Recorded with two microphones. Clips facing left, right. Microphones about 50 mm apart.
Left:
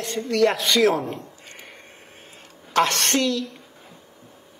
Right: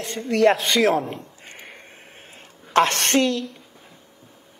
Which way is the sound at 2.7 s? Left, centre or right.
Right.